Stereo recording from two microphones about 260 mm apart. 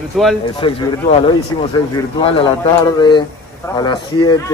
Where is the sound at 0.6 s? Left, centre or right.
Centre.